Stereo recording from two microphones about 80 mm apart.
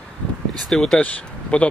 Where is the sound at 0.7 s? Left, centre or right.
Centre.